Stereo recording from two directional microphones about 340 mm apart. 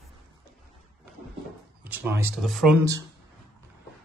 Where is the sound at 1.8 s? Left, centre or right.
Centre.